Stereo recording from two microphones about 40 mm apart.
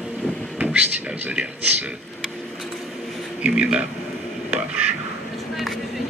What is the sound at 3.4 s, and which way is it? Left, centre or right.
Speech, right.